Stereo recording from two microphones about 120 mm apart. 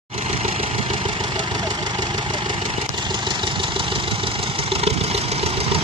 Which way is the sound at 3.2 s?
45° right (ahead or behind).